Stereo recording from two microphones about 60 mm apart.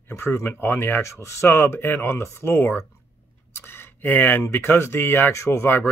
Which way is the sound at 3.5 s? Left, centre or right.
Left.